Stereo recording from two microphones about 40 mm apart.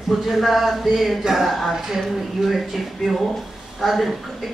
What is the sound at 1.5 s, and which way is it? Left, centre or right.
Speech, centre.